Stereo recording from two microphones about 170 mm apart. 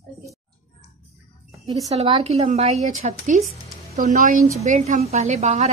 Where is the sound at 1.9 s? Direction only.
35° right (ahead or behind).